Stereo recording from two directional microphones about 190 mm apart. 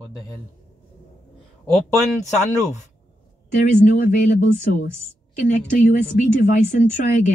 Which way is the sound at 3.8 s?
40° left (ahead or behind).